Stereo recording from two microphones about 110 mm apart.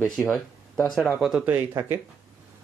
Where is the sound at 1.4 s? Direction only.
20° right (ahead or behind).